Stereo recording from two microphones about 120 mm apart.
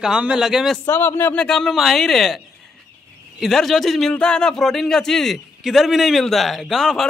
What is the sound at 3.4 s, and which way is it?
A man's voice, centre (ahead or behind).